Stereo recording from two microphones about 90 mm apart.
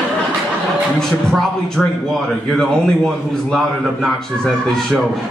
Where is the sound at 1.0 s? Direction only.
5° left (ahead or behind).